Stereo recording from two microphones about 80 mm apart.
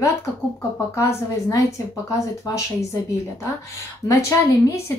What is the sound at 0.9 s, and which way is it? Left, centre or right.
Speech, left.